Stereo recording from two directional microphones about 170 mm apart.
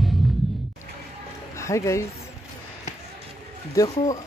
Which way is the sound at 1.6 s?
15° left (ahead or behind).